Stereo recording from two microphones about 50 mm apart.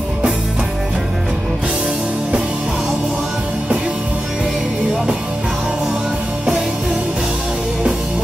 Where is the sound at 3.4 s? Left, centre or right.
Right.